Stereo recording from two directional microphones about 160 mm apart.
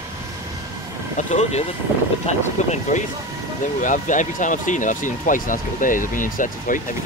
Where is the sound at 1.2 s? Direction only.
45° left (ahead or behind).